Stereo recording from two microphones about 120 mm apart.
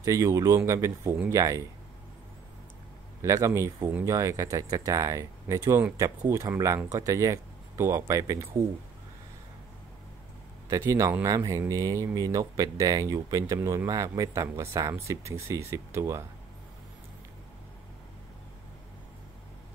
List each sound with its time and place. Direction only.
0.0 s speech: 25° right (ahead or behind)
3.2 s speech: 25° right (ahead or behind)
10.7 s speech: 25° right (ahead or behind)